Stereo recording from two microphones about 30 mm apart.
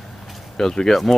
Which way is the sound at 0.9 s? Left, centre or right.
Centre.